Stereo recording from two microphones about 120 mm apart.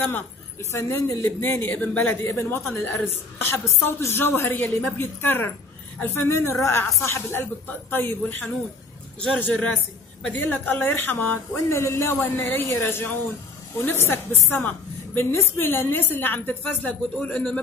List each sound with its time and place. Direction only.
0.6 s a woman's voice: 25° left (ahead or behind)